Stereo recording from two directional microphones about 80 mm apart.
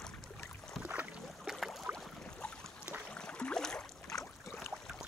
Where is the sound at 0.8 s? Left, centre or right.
Centre.